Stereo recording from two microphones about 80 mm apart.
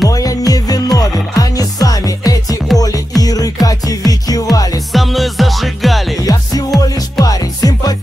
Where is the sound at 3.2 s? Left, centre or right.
Left.